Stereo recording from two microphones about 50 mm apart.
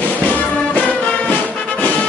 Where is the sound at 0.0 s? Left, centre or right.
Left.